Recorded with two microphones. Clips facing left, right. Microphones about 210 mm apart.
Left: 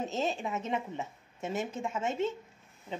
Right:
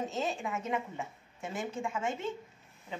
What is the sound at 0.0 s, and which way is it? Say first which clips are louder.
Speech: left 2 dB; 25° left (ahead or behind).